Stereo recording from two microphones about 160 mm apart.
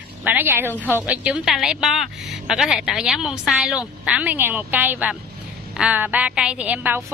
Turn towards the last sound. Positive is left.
turn(degrees=-10)  # may be behind; listen again after turning